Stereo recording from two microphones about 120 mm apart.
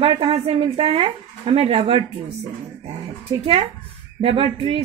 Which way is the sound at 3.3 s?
50° right (ahead or behind).